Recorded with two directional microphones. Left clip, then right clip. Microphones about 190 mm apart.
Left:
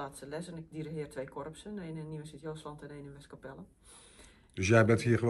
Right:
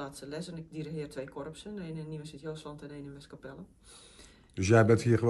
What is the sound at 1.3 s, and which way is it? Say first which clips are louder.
Speech: right 1 dB; 25° left (ahead or behind).